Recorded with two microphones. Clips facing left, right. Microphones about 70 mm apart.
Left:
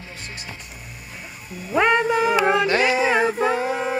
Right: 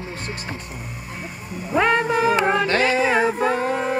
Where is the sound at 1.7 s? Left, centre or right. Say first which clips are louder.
Even; centre.